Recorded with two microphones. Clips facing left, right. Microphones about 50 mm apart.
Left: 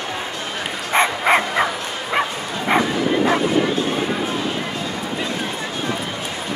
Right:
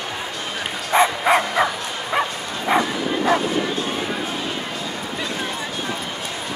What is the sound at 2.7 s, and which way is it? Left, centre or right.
Bow-wow, centre.